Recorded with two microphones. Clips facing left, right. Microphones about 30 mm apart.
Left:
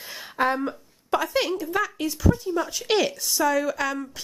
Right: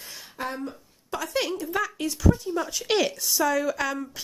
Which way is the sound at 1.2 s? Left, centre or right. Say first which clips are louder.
Left 3 dB; centre.